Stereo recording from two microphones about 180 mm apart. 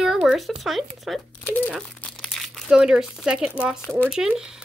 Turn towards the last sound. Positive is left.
turn(degrees=-5)  # may be behind; listen again after turning